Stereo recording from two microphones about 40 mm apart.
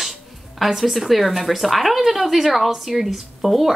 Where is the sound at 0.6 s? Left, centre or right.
Centre.